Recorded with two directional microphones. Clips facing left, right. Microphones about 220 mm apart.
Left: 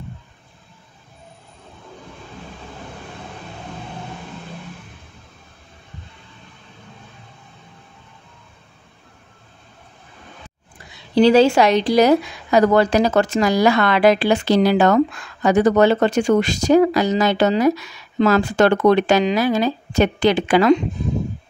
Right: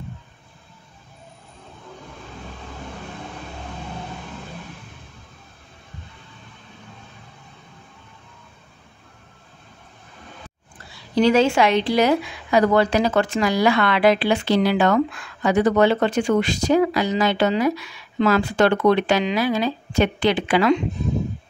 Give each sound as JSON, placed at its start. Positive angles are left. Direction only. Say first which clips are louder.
{"t": 11.1, "sound": "a woman's voice", "louder": "left 4 dB", "side_deg": 35}